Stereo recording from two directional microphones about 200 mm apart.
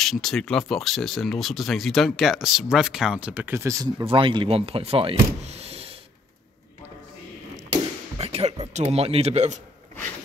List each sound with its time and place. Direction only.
0.0 s speech: centre (ahead or behind); by 3.9 s 15° right (ahead or behind)
4.0 s speech: 25° right (ahead or behind)
7.7 s speech: 30° right (ahead or behind)